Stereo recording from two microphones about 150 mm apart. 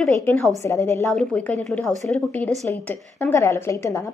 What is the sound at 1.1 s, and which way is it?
A woman's voice, 5° left (ahead or behind).